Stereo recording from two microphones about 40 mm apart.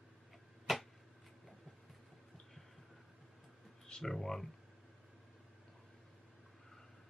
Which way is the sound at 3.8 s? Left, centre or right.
Centre.